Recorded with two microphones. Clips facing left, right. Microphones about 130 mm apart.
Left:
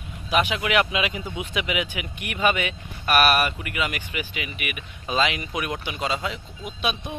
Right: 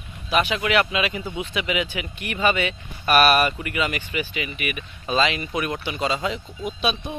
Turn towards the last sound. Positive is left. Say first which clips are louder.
# right 4 dB
turn(degrees=0)  # may be behind; listen again after turning